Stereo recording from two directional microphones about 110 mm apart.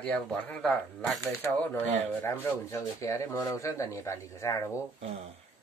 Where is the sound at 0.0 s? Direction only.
15° left (ahead or behind).